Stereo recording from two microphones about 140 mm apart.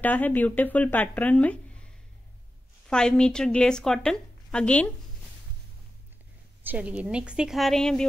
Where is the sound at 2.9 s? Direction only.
5° left (ahead or behind).